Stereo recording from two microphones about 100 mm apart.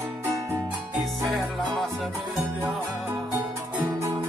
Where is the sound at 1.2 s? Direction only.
Centre (ahead or behind).